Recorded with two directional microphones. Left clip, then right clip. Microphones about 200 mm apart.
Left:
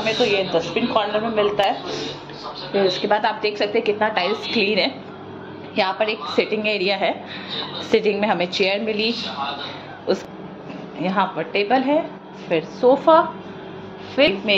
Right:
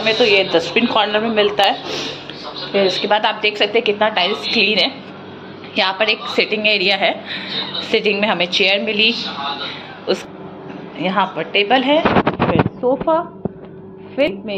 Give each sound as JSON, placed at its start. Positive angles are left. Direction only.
{"t": 0.0, "sound": "a woman's voice", "side_deg": -5}
{"t": 11.0, "sound": "a woman's voice", "side_deg": 0}
{"t": 12.8, "sound": "a woman's voice", "side_deg": 15}